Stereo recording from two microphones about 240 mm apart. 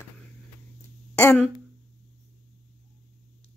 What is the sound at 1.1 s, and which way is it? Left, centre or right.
Speech, centre.